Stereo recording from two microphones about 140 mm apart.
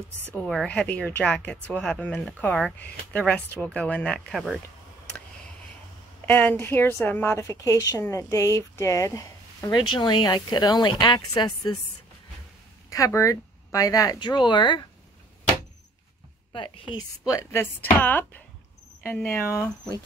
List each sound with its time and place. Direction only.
0.3 s speech: 5° left (ahead or behind)
6.2 s a woman's voice: 15° left (ahead or behind)
12.9 s a woman's voice: 20° left (ahead or behind)
16.5 s a woman's voice: 40° left (ahead or behind)
17.3 s speech: 20° left (ahead or behind)